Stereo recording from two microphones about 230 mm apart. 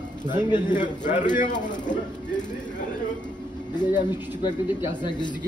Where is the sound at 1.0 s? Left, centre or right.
Left.